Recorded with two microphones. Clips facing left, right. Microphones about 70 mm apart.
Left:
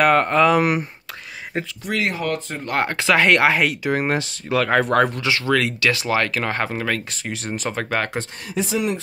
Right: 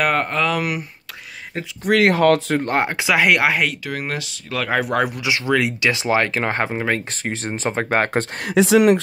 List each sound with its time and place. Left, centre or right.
0.0 s speech: centre
0.5 s speech: left
1.9 s speech: right
2.7 s speech: centre
3.8 s speech: left
4.6 s speech: centre; by 8.3 s right
8.5 s speech: right